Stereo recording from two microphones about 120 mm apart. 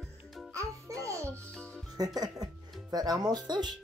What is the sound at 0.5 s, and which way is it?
Music, 25° right (ahead or behind).